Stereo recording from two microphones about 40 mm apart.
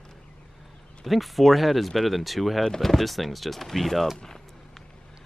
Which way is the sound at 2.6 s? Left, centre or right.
Centre.